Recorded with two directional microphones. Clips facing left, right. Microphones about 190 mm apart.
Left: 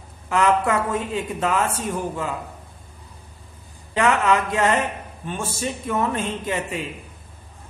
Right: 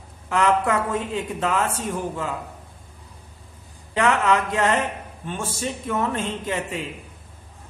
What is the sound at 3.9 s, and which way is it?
Speech, 10° left (ahead or behind).